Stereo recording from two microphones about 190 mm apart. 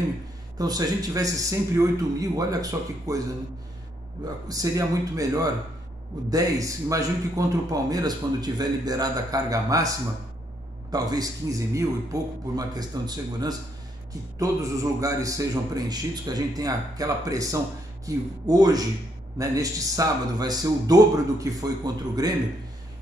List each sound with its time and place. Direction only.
0.6 s speech: 20° right (ahead or behind)
4.5 s a man's voice: 20° right (ahead or behind)